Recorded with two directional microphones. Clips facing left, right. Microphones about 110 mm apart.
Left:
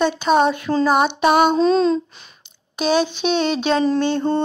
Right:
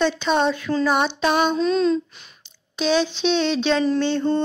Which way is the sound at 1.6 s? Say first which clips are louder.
Left 3 dB; 35° left (ahead or behind).